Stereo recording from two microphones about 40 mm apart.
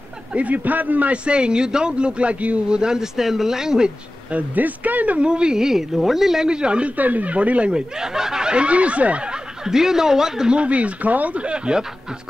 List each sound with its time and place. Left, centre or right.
0.3 s speech: right
1.1 s speech: right
2.7 s speech: centre
4.3 s speech: right
5.3 s speech: right
6.4 s speech: right
7.0 s speech: right
7.7 s speech: centre
9.7 s speech: centre
10.5 s speech: right
11.4 s speech: right